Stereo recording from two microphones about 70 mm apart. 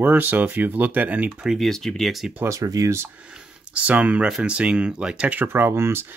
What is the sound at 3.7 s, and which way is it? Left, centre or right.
Speech, right.